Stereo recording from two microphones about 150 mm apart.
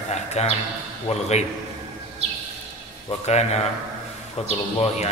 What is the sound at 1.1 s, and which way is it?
Speech, 45° left (ahead or behind).